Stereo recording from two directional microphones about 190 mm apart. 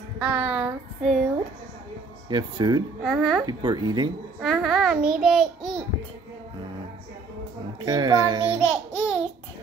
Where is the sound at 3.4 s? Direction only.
20° right (ahead or behind).